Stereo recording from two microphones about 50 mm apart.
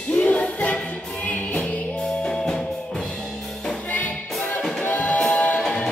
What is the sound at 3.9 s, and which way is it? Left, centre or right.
Music, left.